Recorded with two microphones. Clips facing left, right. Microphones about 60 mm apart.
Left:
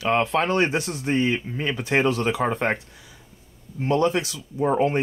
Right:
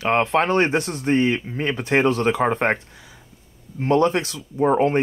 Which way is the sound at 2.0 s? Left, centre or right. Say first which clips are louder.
Right 3 dB; right.